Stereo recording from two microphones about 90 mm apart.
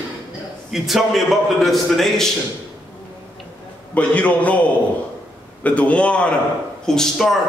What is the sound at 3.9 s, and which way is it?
Speech, 15° left (ahead or behind).